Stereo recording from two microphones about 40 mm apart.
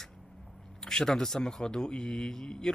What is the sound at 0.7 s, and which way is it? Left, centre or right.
Speech, centre.